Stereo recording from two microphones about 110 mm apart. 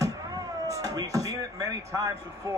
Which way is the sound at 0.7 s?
30° right (ahead or behind).